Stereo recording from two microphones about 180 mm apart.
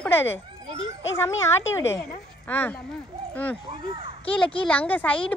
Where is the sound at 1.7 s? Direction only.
15° left (ahead or behind).